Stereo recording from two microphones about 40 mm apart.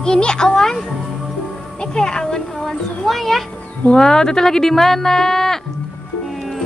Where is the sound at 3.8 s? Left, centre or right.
Centre.